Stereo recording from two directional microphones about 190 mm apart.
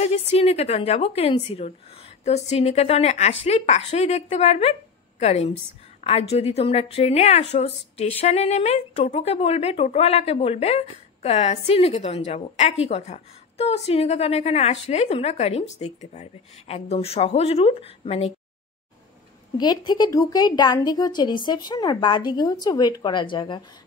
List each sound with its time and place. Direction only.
0.3 s a woman's voice: 30° left (ahead or behind)
19.5 s a woman's voice: 20° left (ahead or behind)